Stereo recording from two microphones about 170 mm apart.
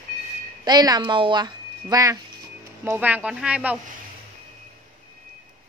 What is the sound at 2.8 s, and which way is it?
Speech, 10° right (ahead or behind).